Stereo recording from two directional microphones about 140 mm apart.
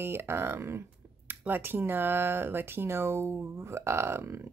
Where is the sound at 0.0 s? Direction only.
15° right (ahead or behind).